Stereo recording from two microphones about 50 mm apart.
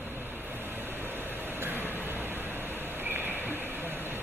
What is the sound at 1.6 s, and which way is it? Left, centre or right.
Vehicle, right.